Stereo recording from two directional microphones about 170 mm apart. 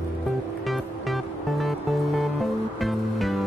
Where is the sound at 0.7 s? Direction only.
Centre (ahead or behind).